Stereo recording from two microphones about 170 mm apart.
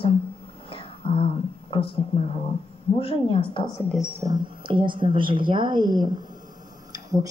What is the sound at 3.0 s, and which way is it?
Speech, 30° left (ahead or behind).